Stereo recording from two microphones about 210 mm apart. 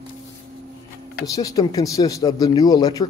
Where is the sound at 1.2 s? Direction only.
15° left (ahead or behind).